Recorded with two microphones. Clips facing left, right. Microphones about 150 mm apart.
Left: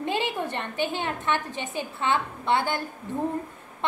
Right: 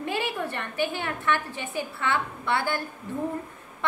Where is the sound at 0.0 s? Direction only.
20° left (ahead or behind).